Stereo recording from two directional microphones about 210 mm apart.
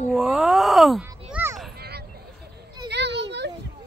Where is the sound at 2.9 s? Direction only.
55° right (ahead or behind).